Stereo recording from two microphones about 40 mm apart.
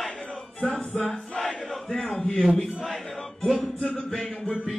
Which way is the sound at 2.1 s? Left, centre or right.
Centre.